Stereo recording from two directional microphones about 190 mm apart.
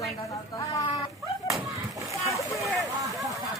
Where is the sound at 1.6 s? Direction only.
15° right (ahead or behind).